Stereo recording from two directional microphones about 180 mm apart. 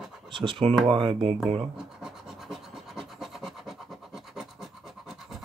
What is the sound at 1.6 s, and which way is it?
Scratch, 5° right (ahead or behind).